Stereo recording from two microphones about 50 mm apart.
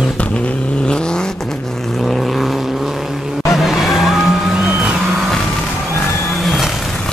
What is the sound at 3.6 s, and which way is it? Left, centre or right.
Vehicle, centre.